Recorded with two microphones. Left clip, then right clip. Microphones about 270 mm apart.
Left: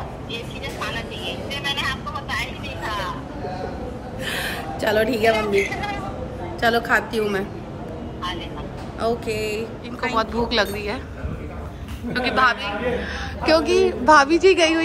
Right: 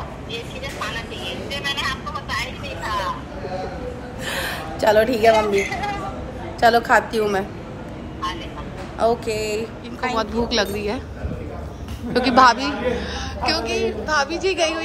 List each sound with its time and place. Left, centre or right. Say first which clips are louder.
0.3 s vehicle: right 1 dB; centre
4.2 s a sound: even; centre
6.6 s a woman's voice: right 4 dB; centre
9.0 s a woman's voice: right 3 dB; centre
10.1 s speech: left 1 dB; centre
12.1 s a woman's voice: right 5 dB; right
13.4 s a woman's voice: left 5 dB; centre
14.1 s a woman's voice: left 7 dB; left